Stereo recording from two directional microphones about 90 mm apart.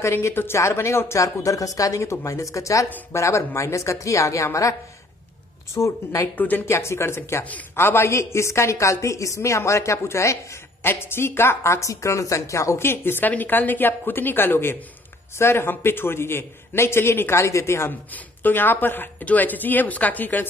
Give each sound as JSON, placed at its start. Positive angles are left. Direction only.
{"t": 0.0, "sound": "speech", "side_deg": 30}
{"t": 5.8, "sound": "speech", "side_deg": 35}
{"t": 6.3, "sound": "a woman's voice", "side_deg": 20}
{"t": 6.7, "sound": "a woman's voice", "side_deg": 30}